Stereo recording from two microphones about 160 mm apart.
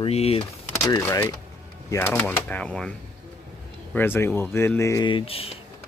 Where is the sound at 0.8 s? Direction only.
15° left (ahead or behind).